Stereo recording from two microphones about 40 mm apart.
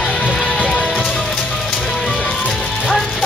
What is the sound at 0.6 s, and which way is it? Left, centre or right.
Music, left.